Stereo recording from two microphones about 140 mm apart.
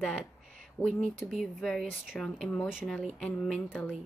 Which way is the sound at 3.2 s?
5° left (ahead or behind).